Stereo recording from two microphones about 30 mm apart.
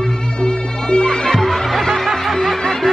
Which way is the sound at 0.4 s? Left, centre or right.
Left.